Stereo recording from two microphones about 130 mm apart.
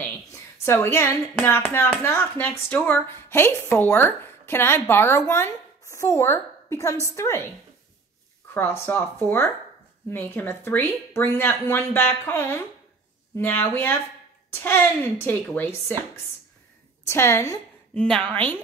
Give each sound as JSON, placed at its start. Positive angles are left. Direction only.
{"t": 0.3, "sound": "speech", "side_deg": 20}
{"t": 8.5, "sound": "speech", "side_deg": 15}
{"t": 17.9, "sound": "speech", "side_deg": 5}